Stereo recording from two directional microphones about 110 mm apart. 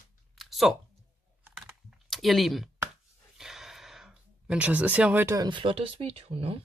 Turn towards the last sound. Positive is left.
turn(degrees=-65)  # may be behind; listen again after turning